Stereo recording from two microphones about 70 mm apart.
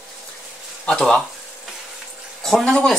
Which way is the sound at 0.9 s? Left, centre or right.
Centre.